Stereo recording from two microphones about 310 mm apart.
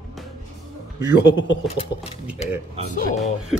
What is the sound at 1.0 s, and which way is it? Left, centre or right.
Speech, left.